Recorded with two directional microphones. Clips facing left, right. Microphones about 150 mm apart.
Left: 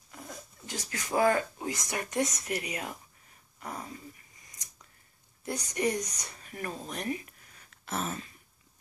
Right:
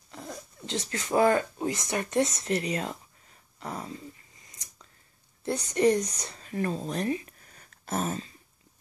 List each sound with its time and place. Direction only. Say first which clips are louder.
0.7 s speech: right 5 dB; 25° right (ahead or behind)
3.5 s a sound: right 3 dB; 30° right (ahead or behind)
5.4 s speech: right 7 dB; 25° right (ahead or behind)